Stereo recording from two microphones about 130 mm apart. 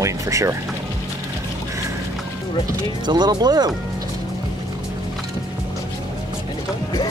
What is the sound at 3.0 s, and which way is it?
Speech, 35° right (ahead or behind).